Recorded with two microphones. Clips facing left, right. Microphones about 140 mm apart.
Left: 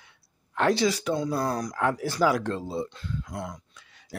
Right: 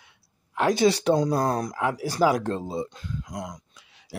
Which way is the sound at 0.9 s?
30° right (ahead or behind).